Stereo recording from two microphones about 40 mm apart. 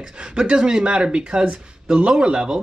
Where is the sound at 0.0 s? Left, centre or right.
Right.